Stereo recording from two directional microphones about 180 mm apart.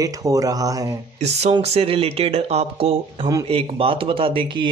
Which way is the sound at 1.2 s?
35° right (ahead or behind).